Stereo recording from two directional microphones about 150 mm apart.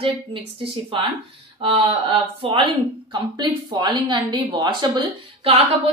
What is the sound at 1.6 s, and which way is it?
A woman's voice, 35° right (ahead or behind).